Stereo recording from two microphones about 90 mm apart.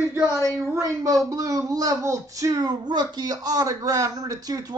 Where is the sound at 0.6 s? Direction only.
35° right (ahead or behind).